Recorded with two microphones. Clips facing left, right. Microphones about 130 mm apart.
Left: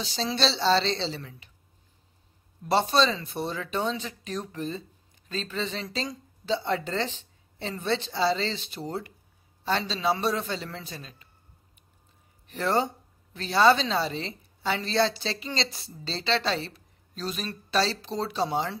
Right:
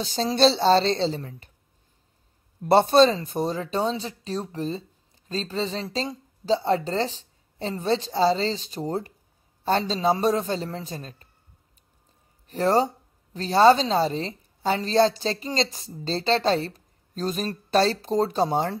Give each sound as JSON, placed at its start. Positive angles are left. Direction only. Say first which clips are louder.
{"t": 0.0, "sound": "speech", "louder": "right 7 dB", "side_deg": -50}
{"t": 2.6, "sound": "speech", "louder": "right 7 dB", "side_deg": -55}
{"t": 12.4, "sound": "speech", "louder": "right 5 dB", "side_deg": -40}